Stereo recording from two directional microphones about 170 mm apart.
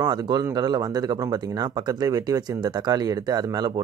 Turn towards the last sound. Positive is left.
turn(degrees=-25)  # may be behind; listen again after turning